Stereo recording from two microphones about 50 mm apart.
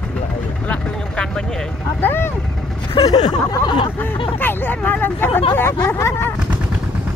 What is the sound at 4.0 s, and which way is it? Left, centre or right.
Speech, left.